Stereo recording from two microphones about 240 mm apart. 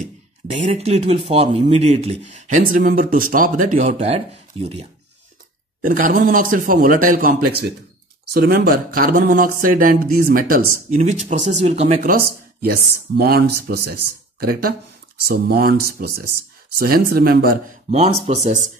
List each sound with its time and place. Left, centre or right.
0.5 s speech: right
5.8 s speech: right